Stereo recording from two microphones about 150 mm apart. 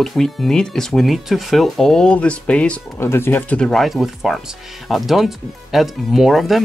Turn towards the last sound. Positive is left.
turn(degrees=0)  # may be behind; listen again after turning